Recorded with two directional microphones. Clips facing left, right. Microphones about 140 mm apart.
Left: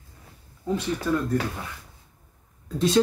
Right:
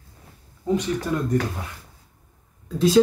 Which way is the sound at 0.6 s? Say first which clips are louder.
Right 2 dB; 15° right (ahead or behind).